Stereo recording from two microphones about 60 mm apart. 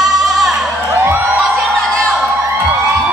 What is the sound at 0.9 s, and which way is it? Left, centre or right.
Crowd, right.